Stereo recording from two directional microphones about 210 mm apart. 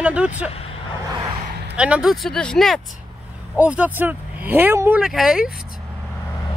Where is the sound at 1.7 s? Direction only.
5° right (ahead or behind).